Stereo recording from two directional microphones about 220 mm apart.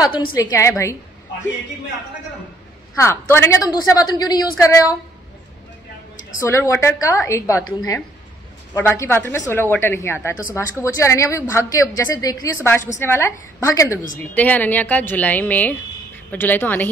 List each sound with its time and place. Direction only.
0.0 s a woman's voice: 20° left (ahead or behind)
3.0 s a woman's voice: 10° left (ahead or behind)
6.4 s a woman's voice: 10° left (ahead or behind)
8.7 s a woman's voice: 10° left (ahead or behind)